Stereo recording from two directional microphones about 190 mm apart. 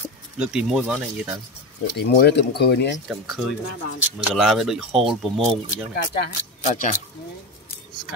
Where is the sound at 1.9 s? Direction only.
60° left (ahead or behind).